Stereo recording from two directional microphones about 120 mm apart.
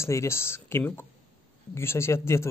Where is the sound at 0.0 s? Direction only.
25° left (ahead or behind).